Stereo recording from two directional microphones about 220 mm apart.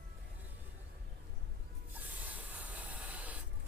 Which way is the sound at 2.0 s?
5° right (ahead or behind).